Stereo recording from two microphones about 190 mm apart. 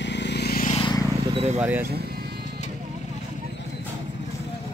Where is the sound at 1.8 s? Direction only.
55° right (ahead or behind).